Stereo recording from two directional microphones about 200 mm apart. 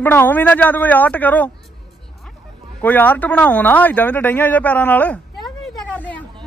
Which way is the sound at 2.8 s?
10° left (ahead or behind).